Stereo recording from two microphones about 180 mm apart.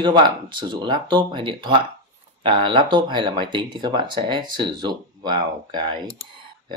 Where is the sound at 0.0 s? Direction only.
25° right (ahead or behind).